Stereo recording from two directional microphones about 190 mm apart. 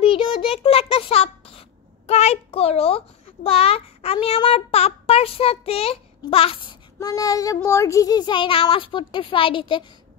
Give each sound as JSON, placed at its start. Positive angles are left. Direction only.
{"t": 0.0, "sound": "child singing", "side_deg": 30}
{"t": 3.4, "sound": "a child's voice", "side_deg": 30}